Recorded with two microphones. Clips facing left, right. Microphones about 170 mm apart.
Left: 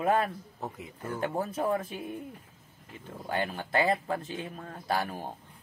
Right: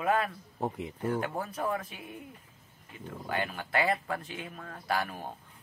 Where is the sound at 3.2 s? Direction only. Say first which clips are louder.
Left 2 dB; 30° left (ahead or behind).